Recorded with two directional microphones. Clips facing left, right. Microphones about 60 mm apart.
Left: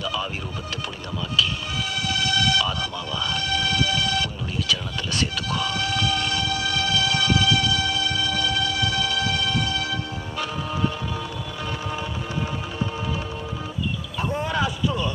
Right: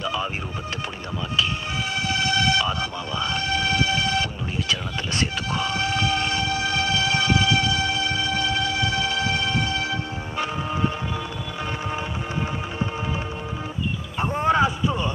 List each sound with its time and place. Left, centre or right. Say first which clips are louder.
0.0 s music: right 1 dB; right
2.0 s music: right 1 dB; right
14.1 s a sound: right 5 dB; right